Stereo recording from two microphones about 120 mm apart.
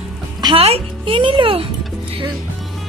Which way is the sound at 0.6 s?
50° right (ahead or behind).